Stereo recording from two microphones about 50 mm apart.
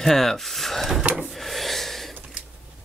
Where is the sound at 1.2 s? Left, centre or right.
Centre.